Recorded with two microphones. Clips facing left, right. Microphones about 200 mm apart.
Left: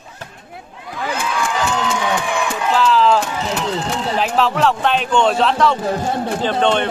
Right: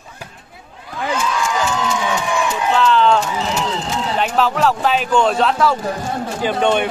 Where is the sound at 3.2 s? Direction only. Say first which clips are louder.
Right 1 dB; 60° left (ahead or behind).